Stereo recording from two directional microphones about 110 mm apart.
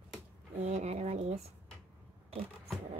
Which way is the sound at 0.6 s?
90° right.